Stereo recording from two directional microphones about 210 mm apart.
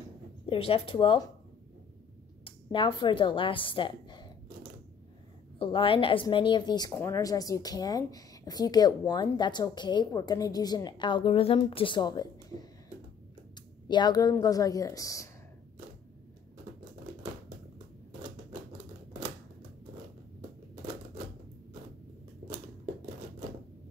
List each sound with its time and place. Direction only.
0.5 s speech: 25° left (ahead or behind)
2.4 s speech: 25° left (ahead or behind)
5.6 s speech: 25° left (ahead or behind)
13.8 s speech: 20° left (ahead or behind)